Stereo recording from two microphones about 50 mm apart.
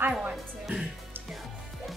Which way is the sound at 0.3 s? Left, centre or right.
Centre.